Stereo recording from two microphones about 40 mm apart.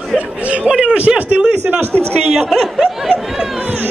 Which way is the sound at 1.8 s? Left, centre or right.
Right.